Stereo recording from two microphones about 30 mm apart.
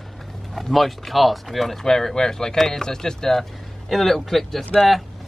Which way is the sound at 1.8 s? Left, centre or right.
Centre.